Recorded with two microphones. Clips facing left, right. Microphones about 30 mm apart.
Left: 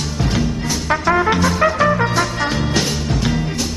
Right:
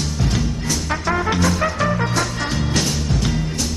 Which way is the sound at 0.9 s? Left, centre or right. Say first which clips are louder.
Left 6 dB; centre.